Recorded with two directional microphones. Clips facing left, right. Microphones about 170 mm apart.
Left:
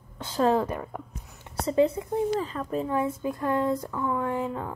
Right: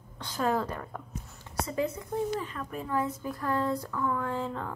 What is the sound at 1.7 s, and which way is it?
Speech, 25° left (ahead or behind).